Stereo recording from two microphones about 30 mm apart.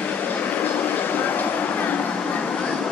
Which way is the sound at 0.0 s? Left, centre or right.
Left.